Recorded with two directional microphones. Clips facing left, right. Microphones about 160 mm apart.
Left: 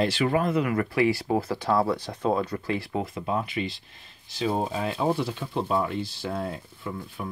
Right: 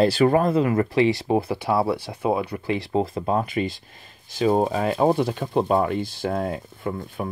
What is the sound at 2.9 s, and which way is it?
Speech, 35° right (ahead or behind).